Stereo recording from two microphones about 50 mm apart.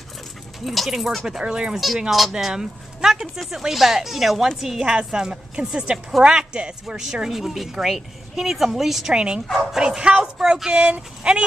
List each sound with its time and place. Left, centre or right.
0.7 s a woman's voice: centre
2.0 s a woman's voice: centre
9.1 s a woman's voice: centre